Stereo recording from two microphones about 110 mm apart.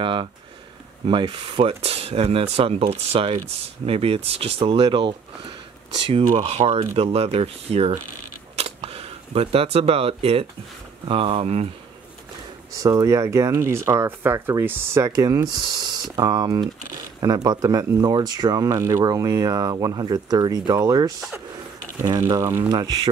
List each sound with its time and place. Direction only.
0.0 s speech: 50° right (ahead or behind)
6.4 s speech: 65° right (ahead or behind)
12.7 s speech: 35° right (ahead or behind)
15.0 s speech: 35° right (ahead or behind)
22.2 s speech: 25° right (ahead or behind)
22.7 s speech: 40° right (ahead or behind)